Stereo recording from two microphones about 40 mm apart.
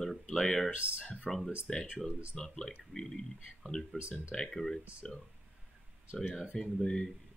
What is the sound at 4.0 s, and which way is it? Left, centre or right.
Speech, right.